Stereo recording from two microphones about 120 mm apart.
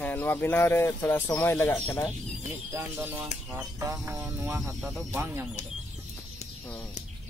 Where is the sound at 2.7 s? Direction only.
20° right (ahead or behind).